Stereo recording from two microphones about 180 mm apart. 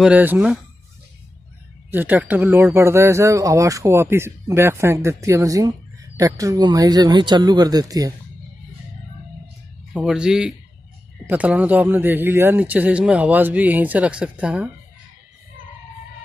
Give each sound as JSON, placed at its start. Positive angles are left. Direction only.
{"t": 0.0, "sound": "speech", "side_deg": -10}
{"t": 1.9, "sound": "speech", "side_deg": -10}
{"t": 9.9, "sound": "speech", "side_deg": -5}